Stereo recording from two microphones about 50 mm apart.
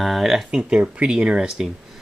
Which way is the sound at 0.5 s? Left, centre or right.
Right.